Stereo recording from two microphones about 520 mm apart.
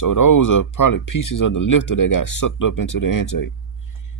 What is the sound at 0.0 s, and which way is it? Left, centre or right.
Speech, left.